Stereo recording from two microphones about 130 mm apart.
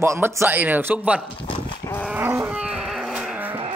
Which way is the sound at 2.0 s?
15° right (ahead or behind).